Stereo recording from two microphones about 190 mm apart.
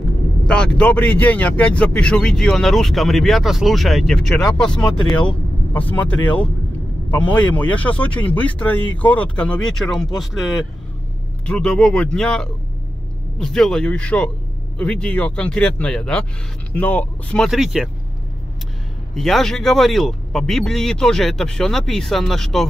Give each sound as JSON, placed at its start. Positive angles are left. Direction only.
{"t": 0.5, "sound": "speech", "side_deg": 5}
{"t": 4.5, "sound": "speech", "side_deg": 25}
{"t": 5.7, "sound": "speech", "side_deg": 10}
{"t": 19.1, "sound": "speech", "side_deg": 0}